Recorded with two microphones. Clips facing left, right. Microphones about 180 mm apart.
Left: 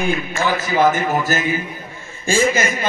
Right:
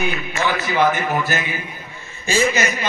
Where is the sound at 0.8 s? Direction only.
45° left (ahead or behind).